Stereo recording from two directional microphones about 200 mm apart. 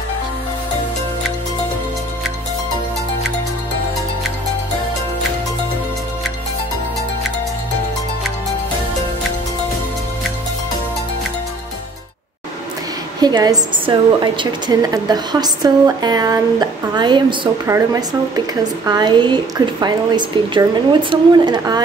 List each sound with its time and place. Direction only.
13.2 s a woman's voice: 20° right (ahead or behind)